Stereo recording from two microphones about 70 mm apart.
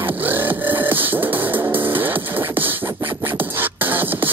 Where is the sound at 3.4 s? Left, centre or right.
Right.